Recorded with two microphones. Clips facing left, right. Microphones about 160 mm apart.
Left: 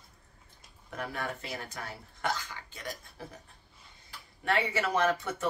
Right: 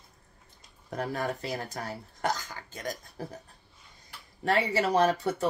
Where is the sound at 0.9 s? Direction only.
35° right (ahead or behind).